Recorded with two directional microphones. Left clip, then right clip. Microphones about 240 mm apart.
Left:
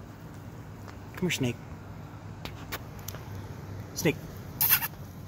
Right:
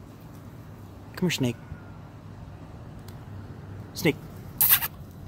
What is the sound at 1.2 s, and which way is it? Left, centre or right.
Speech, right.